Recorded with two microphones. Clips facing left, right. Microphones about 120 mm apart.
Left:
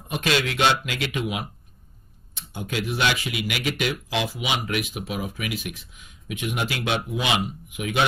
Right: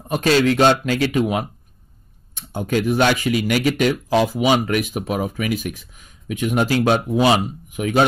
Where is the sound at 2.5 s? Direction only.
45° right (ahead or behind).